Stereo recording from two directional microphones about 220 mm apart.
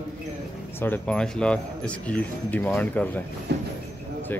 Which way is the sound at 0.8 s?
5° left (ahead or behind).